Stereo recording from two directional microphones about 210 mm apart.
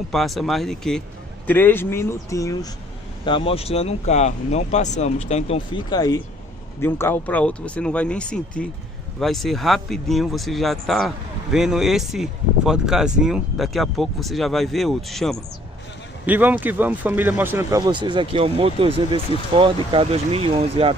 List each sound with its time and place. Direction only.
0.1 s speech: centre (ahead or behind); by 5.6 s 30° left (ahead or behind)
5.9 s speech: 20° left (ahead or behind); by 20.9 s 25° right (ahead or behind)